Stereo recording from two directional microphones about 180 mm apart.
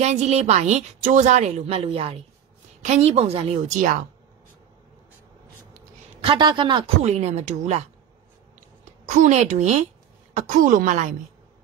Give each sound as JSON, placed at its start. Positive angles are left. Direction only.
{"t": 0.0, "sound": "a woman's voice", "side_deg": -40}
{"t": 6.2, "sound": "a woman's voice", "side_deg": -25}
{"t": 9.0, "sound": "a woman's voice", "side_deg": -40}